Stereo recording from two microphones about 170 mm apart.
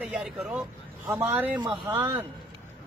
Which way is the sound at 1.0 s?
15° right (ahead or behind).